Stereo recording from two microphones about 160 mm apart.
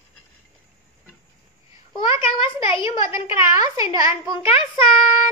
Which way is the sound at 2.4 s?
35° left (ahead or behind).